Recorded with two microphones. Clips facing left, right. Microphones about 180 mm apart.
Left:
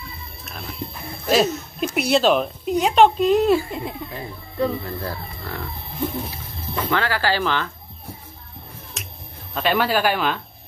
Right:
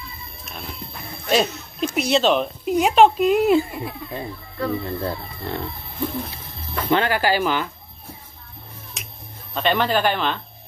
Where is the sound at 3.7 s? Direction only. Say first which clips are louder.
Even; 20° left (ahead or behind).